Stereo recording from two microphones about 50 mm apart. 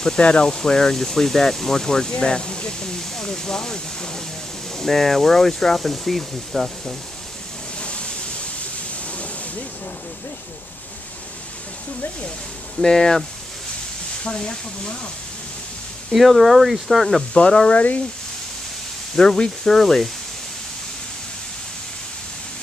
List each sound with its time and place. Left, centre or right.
0.0 s speech: centre
7.8 s a sound: left
12.8 s speech: centre
14.2 s speech: centre
16.1 s speech: centre
17.3 s speech: centre
19.1 s speech: centre
19.8 s speech: centre